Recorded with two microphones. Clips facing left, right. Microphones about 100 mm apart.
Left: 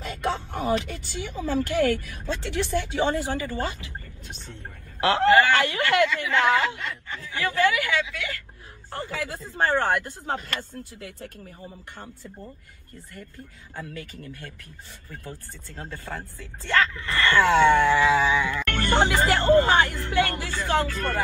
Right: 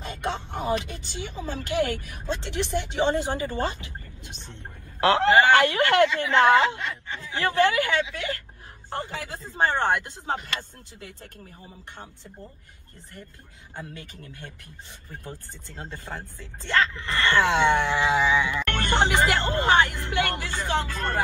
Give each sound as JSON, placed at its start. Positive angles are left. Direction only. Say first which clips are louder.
{"t": 0.0, "sound": "a woman's voice", "louder": "left 2 dB", "side_deg": -20}
{"t": 8.9, "sound": "speech", "louder": "left 1 dB", "side_deg": -20}
{"t": 13.7, "sound": "speech", "louder": "left 3 dB", "side_deg": -20}